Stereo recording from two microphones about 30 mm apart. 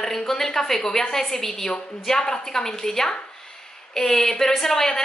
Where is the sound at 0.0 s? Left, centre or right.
Centre.